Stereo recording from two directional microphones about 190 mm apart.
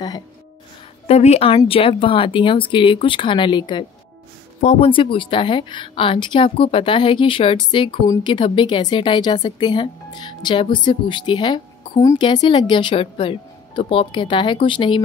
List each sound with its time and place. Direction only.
1.0 s a woman's voice: 35° left (ahead or behind)
4.6 s a woman's voice: 35° left (ahead or behind)